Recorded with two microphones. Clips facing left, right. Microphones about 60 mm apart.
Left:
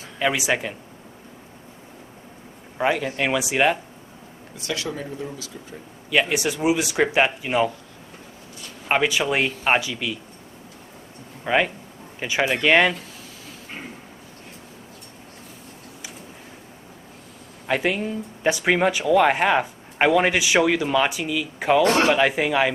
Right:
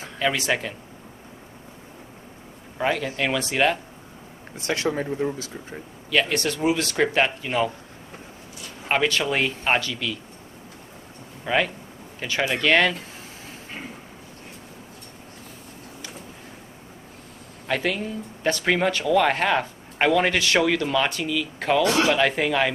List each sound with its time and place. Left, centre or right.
0.2 s speech: centre
2.8 s speech: centre
4.6 s speech: right
6.0 s speech: centre
8.8 s speech: centre
11.4 s speech: centre
17.6 s speech: centre
21.8 s speech: left
22.1 s speech: centre